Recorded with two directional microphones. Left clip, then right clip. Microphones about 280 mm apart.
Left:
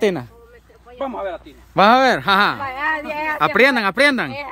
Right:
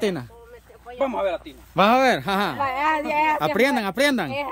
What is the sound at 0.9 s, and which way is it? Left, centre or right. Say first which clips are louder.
Speech: right 2 dB; right.